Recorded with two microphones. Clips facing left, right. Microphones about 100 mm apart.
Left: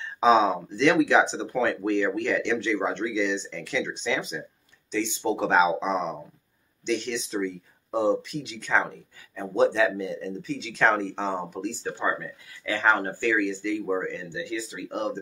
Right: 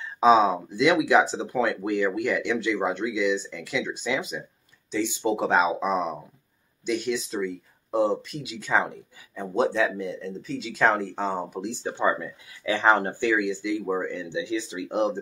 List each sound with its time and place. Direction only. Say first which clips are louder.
0.0 s speech: right 1 dB; centre (ahead or behind)
11.6 s speech: right 5 dB; 15° right (ahead or behind)